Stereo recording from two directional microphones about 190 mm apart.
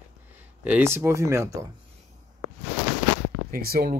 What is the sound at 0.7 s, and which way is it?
Speech, 10° right (ahead or behind).